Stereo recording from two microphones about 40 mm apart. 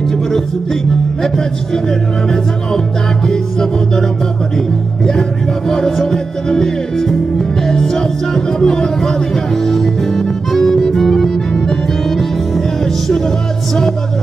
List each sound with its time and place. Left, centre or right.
1.2 s music: centre